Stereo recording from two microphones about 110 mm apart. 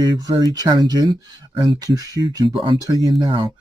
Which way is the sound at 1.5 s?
50° right (ahead or behind).